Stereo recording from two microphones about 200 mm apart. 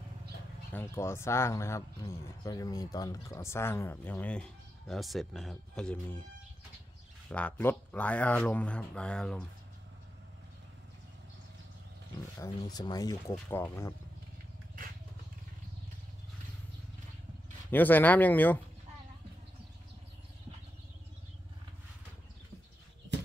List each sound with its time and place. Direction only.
0.7 s speech: 10° left (ahead or behind)
7.2 s speech: 5° left (ahead or behind)
12.4 s speech: 20° left (ahead or behind)
17.6 s speech: 10° left (ahead or behind)